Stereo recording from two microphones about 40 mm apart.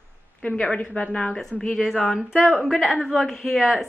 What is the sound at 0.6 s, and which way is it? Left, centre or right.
Speech, left.